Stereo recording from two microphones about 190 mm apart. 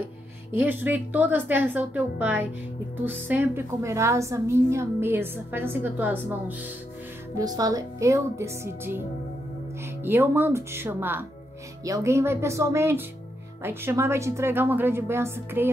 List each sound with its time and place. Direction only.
0.5 s a woman's voice: 10° right (ahead or behind)
7.3 s a woman's voice: 20° right (ahead or behind)
10.0 s a woman's voice: 10° right (ahead or behind)